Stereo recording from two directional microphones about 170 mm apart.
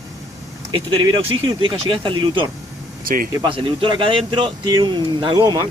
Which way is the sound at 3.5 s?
30° right (ahead or behind).